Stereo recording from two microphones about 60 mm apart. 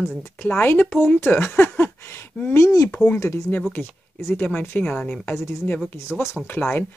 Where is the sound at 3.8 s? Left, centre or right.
Centre.